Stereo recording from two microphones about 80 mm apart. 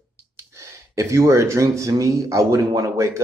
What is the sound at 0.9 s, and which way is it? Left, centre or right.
Speech, right.